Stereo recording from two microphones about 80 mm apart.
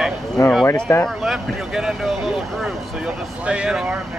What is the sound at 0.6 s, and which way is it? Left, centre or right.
Speech, left.